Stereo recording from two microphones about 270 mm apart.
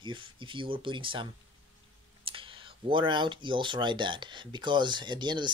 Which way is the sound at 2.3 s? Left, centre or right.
Centre.